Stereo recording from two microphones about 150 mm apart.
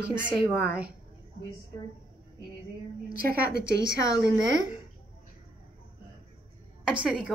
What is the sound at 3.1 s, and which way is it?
Speech, 90° left.